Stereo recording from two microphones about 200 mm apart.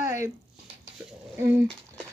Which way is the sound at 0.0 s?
15° right (ahead or behind).